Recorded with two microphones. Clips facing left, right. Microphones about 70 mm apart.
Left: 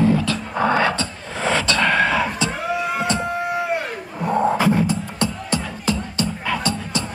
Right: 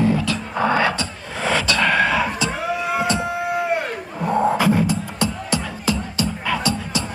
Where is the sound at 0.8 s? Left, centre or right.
Centre.